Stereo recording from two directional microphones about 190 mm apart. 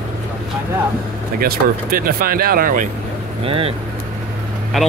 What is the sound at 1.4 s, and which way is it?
Speech, 50° right (ahead or behind).